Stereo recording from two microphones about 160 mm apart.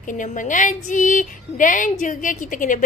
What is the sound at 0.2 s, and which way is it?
Speech, 55° left (ahead or behind).